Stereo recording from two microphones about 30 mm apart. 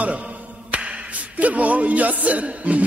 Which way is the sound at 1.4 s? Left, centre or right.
Right.